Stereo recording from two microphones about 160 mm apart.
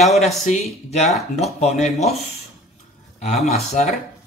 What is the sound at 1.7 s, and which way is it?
Speech, centre (ahead or behind).